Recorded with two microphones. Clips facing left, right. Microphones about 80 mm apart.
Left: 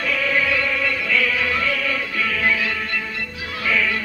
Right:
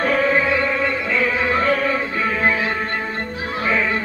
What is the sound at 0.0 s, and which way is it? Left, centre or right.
Music, right.